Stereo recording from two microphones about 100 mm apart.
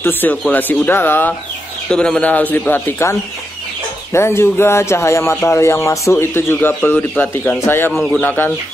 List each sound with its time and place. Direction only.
0.0 s speech: 20° left (ahead or behind)
1.9 s speech: 10° left (ahead or behind)
7.9 s speech: centre (ahead or behind)
8.2 s speech: 20° left (ahead or behind)